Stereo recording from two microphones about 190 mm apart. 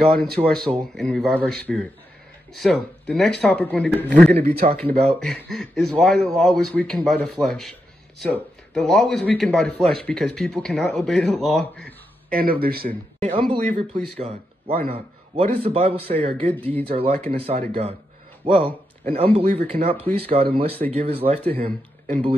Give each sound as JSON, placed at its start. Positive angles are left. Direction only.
{"t": 0.0, "sound": "speech", "side_deg": 0}
{"t": 4.4, "sound": "speech", "side_deg": -55}
{"t": 5.0, "sound": "speech", "side_deg": 0}
{"t": 12.3, "sound": "speech", "side_deg": -50}
{"t": 14.7, "sound": "speech", "side_deg": -50}
{"t": 15.3, "sound": "a man's voice", "side_deg": -30}